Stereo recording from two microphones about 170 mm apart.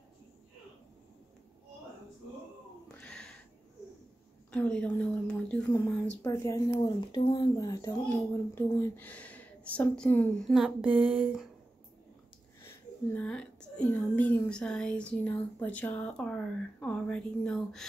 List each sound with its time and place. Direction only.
3.0 s sniff: 5° left (ahead or behind)
4.5 s a woman's voice: 5° left (ahead or behind)
6.2 s speech: 20° left (ahead or behind)
10.5 s speech: 5° right (ahead or behind)
12.6 s a woman's voice: 10° left (ahead or behind)